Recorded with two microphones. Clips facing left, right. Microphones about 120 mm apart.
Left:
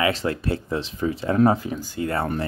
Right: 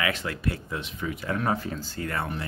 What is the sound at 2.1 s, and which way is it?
Speech, 40° left (ahead or behind).